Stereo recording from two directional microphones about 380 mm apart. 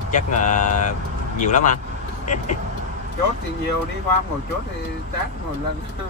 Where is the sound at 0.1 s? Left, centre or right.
Centre.